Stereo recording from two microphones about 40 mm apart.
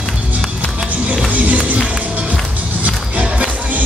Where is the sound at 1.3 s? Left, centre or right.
Right.